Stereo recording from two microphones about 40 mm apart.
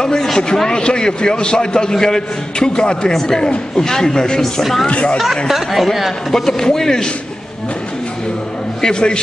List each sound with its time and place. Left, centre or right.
0.0 s a woman's voice: centre
3.1 s a woman's voice: centre
4.8 s a man's voice: left
5.1 s speech: centre
6.3 s a woman's voice: centre
8.8 s a man's voice: left